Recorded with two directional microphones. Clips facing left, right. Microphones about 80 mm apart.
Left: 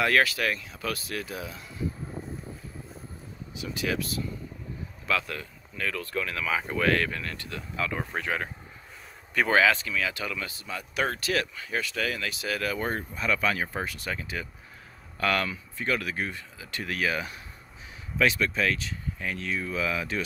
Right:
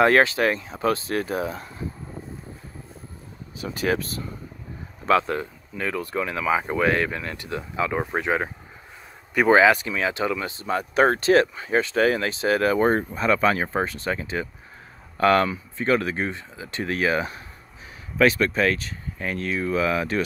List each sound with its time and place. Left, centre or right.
0.0 s speech: right
3.5 s speech: right
10.7 s speech: right
18.1 s speech: right